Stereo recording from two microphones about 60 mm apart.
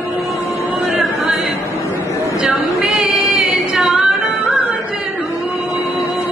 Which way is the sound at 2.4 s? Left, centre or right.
Centre.